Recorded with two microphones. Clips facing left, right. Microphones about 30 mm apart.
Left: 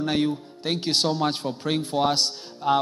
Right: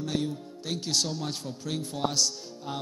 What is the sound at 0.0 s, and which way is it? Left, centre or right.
Speech, left.